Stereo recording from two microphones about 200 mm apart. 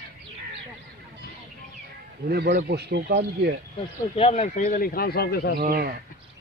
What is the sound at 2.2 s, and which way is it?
A man's voice, 50° right (ahead or behind).